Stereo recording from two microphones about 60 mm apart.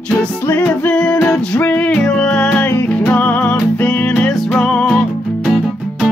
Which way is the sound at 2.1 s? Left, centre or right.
Centre.